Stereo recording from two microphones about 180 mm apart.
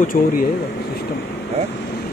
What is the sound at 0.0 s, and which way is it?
Speech, 50° left (ahead or behind).